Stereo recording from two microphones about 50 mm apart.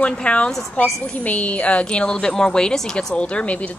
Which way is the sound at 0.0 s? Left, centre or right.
Left.